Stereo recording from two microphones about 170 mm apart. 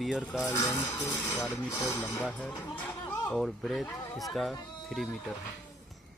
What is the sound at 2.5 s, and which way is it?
Chatter, 15° left (ahead or behind).